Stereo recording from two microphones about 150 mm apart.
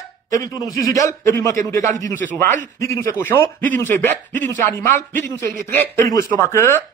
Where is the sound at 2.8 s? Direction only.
20° left (ahead or behind).